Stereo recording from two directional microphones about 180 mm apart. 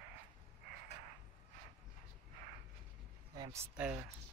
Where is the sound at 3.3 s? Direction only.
20° right (ahead or behind).